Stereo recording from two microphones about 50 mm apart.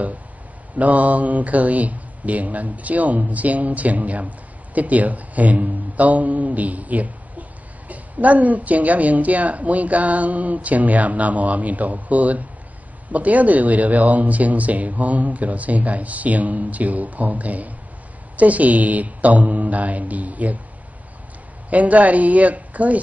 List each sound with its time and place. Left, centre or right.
0.7 s speech: right
21.6 s speech: right